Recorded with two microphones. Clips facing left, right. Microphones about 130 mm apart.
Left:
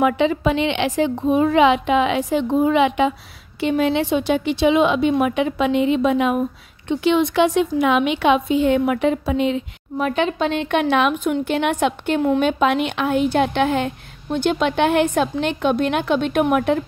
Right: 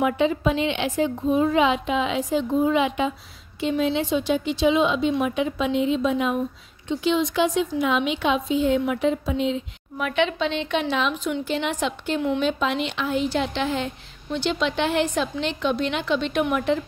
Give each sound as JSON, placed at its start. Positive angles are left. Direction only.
{"t": 0.0, "sound": "a woman's voice", "side_deg": 90}
{"t": 9.9, "sound": "a woman's voice", "side_deg": 40}
{"t": 12.2, "sound": "a woman's voice", "side_deg": 50}